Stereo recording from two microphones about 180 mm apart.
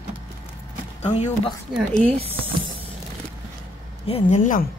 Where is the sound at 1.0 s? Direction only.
40° left (ahead or behind).